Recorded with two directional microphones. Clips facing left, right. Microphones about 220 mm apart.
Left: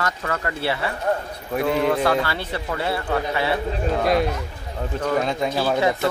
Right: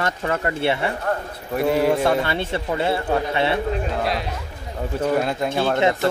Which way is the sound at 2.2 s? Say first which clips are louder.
Right 3 dB; 25° right (ahead or behind).